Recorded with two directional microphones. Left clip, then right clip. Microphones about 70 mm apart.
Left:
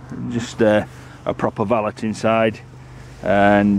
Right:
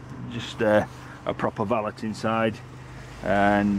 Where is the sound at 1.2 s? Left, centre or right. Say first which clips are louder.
Left 6 dB; left.